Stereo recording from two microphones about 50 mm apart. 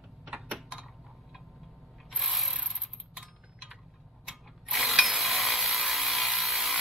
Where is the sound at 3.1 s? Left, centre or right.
Centre.